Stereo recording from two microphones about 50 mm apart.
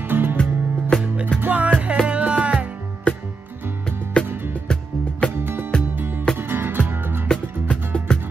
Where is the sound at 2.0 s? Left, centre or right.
Right.